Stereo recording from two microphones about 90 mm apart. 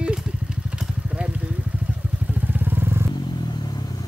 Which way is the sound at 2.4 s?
20° right (ahead or behind).